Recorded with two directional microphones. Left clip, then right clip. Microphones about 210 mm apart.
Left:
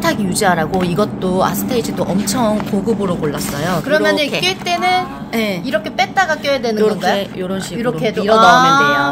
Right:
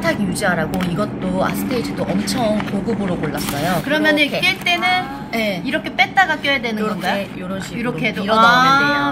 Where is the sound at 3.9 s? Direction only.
50° left (ahead or behind).